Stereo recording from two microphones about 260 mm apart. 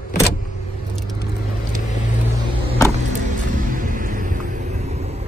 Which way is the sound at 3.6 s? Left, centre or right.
Right.